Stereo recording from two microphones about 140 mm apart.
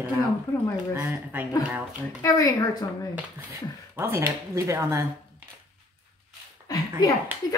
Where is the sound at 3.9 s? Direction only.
15° right (ahead or behind).